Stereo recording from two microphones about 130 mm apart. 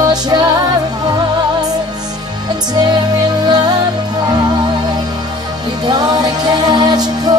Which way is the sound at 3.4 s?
35° right (ahead or behind).